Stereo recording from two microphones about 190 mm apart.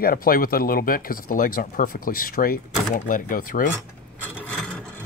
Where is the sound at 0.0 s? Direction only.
50° left (ahead or behind).